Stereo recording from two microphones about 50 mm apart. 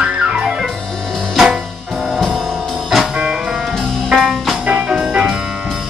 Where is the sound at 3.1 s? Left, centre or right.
Centre.